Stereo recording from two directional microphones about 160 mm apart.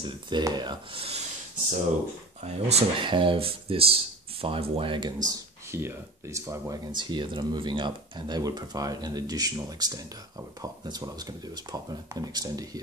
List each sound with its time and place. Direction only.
0.0 s speech: 25° right (ahead or behind)
2.4 s speech: 35° right (ahead or behind)
5.3 s speech: 15° right (ahead or behind)